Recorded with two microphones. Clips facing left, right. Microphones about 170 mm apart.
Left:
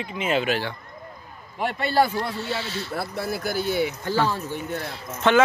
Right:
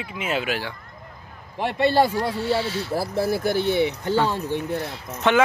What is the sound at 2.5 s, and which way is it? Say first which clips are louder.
Speech: right 6 dB; 10° right (ahead or behind).